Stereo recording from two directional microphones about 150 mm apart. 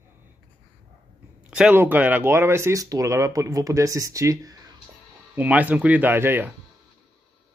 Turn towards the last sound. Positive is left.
turn(degrees=-15)  # may be behind; listen again after turning